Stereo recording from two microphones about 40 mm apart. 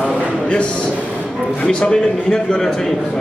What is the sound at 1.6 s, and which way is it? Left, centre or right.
Speech, left.